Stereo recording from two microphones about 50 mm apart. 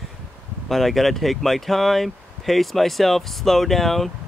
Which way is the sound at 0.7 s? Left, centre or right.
Centre.